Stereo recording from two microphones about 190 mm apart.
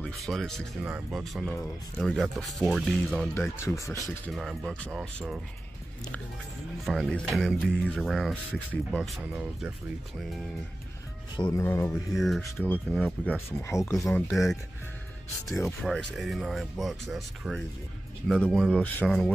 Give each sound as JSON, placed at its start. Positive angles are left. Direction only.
{"t": 0.0, "sound": "speech", "side_deg": 0}
{"t": 3.3, "sound": "speech", "side_deg": 15}
{"t": 4.3, "sound": "speech", "side_deg": 0}
{"t": 6.9, "sound": "speech", "side_deg": 0}
{"t": 11.3, "sound": "speech", "side_deg": 25}
{"t": 11.6, "sound": "speech", "side_deg": 15}
{"t": 14.0, "sound": "speech", "side_deg": 0}